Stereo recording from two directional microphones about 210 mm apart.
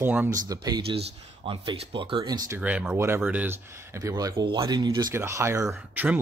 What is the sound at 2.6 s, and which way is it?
Speech, 5° right (ahead or behind).